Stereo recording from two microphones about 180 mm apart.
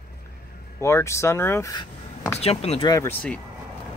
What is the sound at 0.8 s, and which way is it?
Speech, 15° left (ahead or behind).